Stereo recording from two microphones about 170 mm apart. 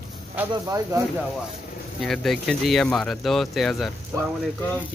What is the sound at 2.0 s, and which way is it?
Speech, centre (ahead or behind).